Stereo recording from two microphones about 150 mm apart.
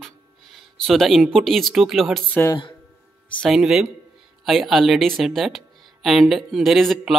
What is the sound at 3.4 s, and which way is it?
Speech, 5° right (ahead or behind).